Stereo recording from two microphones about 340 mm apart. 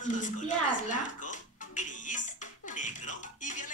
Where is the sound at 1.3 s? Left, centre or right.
Left.